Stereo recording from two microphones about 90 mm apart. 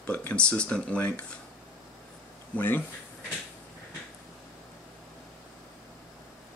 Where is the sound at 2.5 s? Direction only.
20° left (ahead or behind).